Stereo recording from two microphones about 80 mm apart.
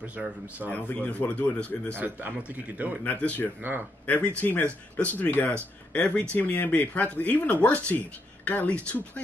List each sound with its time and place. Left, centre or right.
0.7 s speech: centre
2.0 s a man's voice: right
3.0 s speech: centre
3.6 s a man's voice: right
4.0 s speech: centre